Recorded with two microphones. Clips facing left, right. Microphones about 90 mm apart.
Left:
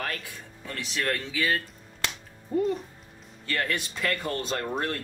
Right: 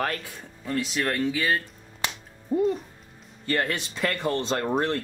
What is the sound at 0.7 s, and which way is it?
Speech, 20° right (ahead or behind).